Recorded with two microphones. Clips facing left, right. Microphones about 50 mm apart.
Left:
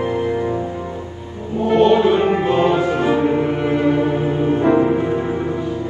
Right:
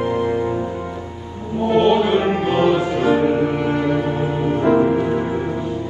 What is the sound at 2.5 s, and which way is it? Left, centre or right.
Music, left.